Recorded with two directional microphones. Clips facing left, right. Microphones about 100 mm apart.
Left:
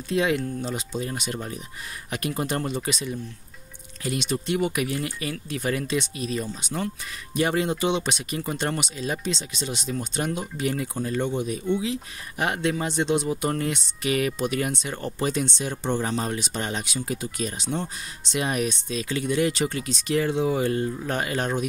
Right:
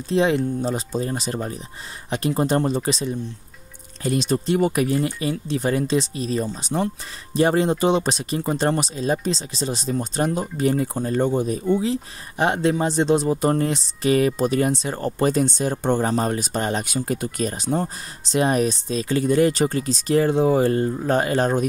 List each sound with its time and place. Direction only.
0.1 s speech: 30° right (ahead or behind)